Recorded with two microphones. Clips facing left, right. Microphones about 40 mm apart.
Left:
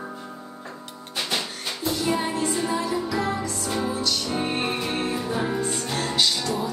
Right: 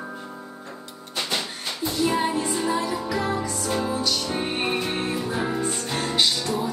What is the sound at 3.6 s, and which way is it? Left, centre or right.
Music, centre.